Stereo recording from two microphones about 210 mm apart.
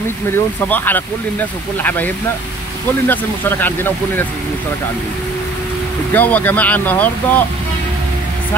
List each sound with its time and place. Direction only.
0.7 s speech: 10° left (ahead or behind)
6.1 s speech: 10° left (ahead or behind)